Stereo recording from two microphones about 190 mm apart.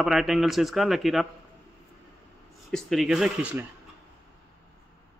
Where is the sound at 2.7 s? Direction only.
Centre (ahead or behind).